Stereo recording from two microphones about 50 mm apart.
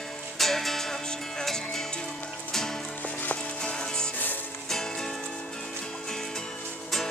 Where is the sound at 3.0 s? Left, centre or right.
Left.